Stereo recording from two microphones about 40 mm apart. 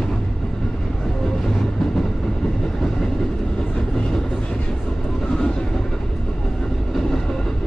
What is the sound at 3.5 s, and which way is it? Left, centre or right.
Train, left.